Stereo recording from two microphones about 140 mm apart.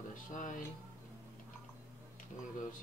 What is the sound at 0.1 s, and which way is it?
Music, 70° left (ahead or behind).